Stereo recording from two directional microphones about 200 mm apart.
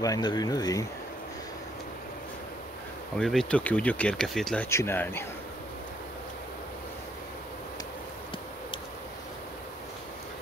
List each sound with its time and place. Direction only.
0.0 s speech: 20° left (ahead or behind)
3.2 s speech: 5° left (ahead or behind)
4.6 s speech: 10° left (ahead or behind)